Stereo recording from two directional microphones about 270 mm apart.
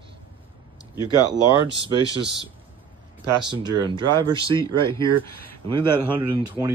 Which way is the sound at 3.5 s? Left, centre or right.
Centre.